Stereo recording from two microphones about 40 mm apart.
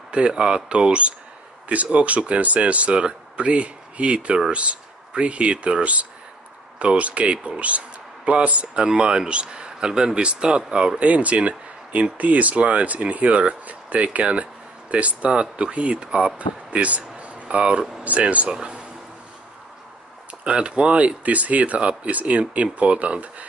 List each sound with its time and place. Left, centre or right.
0.1 s speech: right
8.8 s speech: right
16.3 s speech: right
18.5 s speech: right
20.4 s speech: right